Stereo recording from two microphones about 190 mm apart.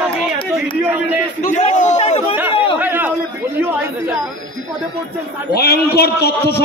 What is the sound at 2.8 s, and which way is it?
Chatter, 10° right (ahead or behind).